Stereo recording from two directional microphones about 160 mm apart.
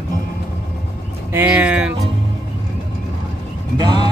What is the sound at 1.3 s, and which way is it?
Speech, 10° right (ahead or behind).